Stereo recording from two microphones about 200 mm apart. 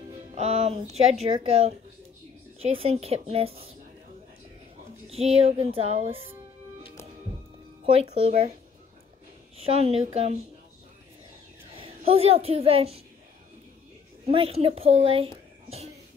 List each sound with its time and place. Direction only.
0.3 s music: 30° right (ahead or behind)
5.1 s music: 30° right (ahead or behind)
7.8 s music: 30° right (ahead or behind)
9.6 s music: 30° right (ahead or behind)
11.7 s a woman's voice: 30° right (ahead or behind)
14.2 s a child's voice: 30° right (ahead or behind)